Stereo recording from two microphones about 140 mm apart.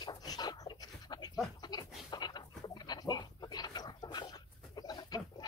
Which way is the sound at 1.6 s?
30° left (ahead or behind).